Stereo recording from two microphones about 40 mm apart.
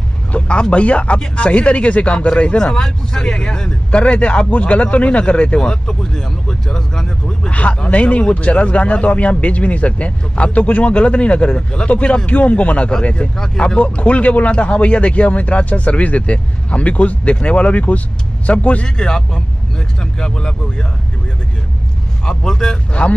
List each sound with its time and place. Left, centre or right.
0.3 s speech: left
4.0 s speech: left
18.9 s speech: centre
22.2 s speech: centre